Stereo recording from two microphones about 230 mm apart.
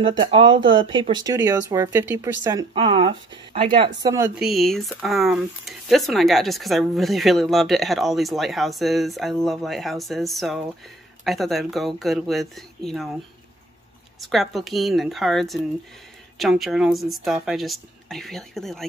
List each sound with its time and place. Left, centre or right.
0.2 s speech: right
4.4 s speech: centre
14.2 s speech: centre